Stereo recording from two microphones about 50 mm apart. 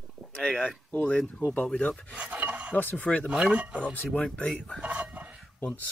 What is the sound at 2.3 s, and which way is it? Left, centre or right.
Filing, right.